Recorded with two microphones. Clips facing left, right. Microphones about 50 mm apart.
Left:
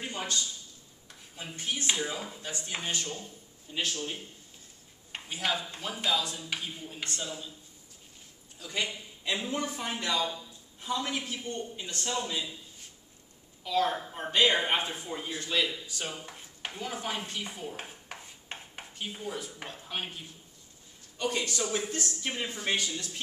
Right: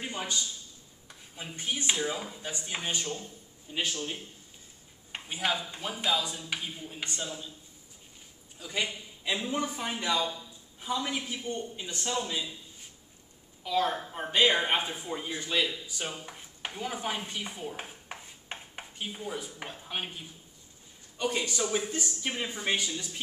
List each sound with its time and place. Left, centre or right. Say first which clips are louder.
0.0 s a sound: even; centre
1.0 s a man's voice: even; centre
5.1 s a man's voice: right 1 dB; centre
8.5 s a man's voice: right 1 dB; centre
13.7 s a man's voice: even; centre
16.3 s a sound: right 1 dB; centre
21.2 s a man's voice: right 1 dB; centre